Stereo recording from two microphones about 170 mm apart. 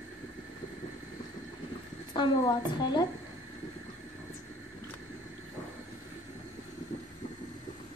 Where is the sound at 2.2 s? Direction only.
25° left (ahead or behind).